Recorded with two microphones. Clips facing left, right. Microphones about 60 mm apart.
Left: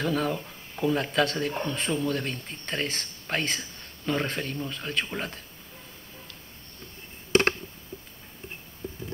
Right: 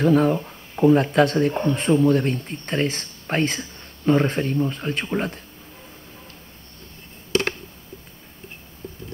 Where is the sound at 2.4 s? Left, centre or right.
Right.